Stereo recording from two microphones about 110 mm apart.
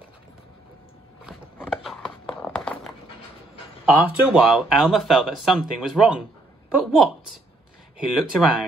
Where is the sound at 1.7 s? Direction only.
Centre (ahead or behind).